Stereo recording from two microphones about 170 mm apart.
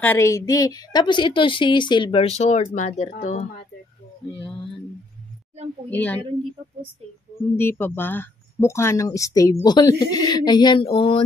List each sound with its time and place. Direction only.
0.0 s speech: 15° left (ahead or behind); by 3.4 s 40° left (ahead or behind)
5.9 s a woman's voice: 10° left (ahead or behind)
7.5 s speech: 15° left (ahead or behind); by 11.2 s 35° left (ahead or behind)